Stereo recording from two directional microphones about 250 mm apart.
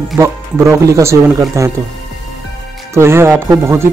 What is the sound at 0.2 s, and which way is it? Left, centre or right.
A man's voice, centre.